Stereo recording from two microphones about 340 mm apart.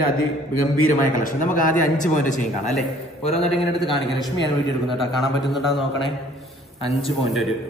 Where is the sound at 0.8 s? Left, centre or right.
Left.